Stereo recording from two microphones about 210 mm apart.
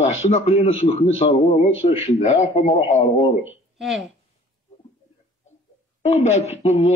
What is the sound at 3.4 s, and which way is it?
Speech, 5° right (ahead or behind).